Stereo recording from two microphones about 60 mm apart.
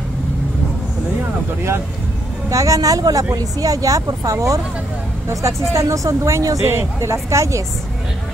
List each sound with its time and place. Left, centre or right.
2.5 s speech: right
5.7 s a woman's voice: right
6.6 s speech: right